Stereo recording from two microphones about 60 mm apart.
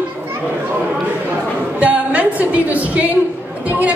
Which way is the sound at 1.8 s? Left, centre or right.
Right.